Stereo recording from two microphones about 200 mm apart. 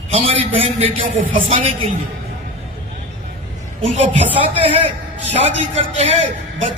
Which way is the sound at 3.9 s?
30° right (ahead or behind).